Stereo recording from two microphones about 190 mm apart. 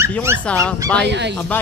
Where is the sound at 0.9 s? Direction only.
65° right (ahead or behind).